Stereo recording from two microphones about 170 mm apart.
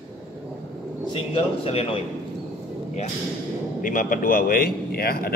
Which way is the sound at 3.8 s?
50° left (ahead or behind).